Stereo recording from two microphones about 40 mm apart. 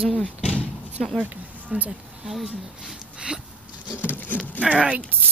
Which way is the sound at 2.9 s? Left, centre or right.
Centre.